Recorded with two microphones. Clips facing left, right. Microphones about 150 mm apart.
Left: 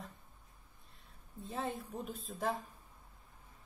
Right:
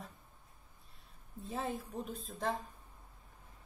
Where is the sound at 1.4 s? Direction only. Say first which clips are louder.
Right 1 dB; centre (ahead or behind).